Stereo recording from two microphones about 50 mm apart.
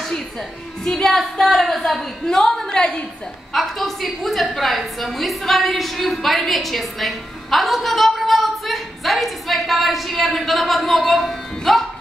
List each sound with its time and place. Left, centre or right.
0.8 s a woman's voice: centre
3.5 s a woman's voice: centre